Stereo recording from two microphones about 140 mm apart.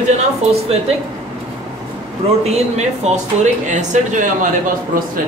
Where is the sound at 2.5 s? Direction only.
50° right (ahead or behind).